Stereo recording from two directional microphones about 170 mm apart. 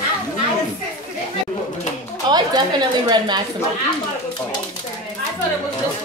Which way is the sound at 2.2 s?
25° right (ahead or behind).